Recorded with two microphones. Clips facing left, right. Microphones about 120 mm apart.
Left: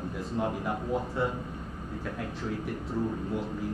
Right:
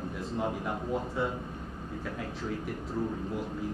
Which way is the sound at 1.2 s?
Centre (ahead or behind).